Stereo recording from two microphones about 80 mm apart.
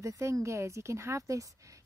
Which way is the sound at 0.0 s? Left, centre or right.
Right.